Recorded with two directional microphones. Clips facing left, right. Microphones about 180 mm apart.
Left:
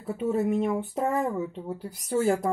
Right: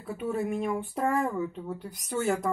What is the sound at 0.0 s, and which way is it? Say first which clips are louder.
Speech: left 4 dB; 25° left (ahead or behind).